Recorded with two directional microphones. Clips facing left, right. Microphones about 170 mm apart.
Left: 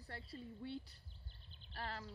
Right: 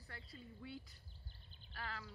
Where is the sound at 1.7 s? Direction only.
30° left (ahead or behind).